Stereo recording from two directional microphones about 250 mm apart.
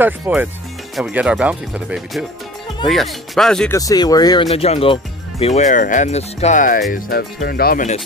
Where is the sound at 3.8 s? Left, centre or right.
Centre; by 8.0 s left.